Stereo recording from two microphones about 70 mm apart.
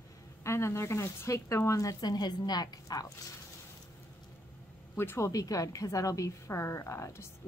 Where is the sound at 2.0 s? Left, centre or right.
Left.